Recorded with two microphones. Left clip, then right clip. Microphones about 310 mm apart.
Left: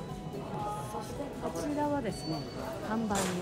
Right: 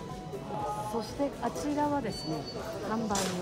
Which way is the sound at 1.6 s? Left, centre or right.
Centre.